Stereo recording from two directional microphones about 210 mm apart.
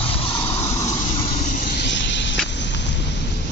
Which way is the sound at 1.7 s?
60° left (ahead or behind).